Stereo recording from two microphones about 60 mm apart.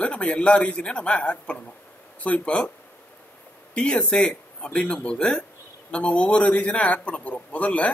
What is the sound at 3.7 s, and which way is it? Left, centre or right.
Speech, centre.